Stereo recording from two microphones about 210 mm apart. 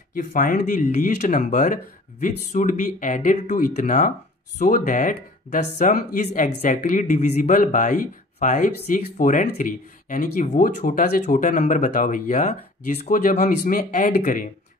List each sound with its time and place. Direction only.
0.2 s speech: 40° left (ahead or behind)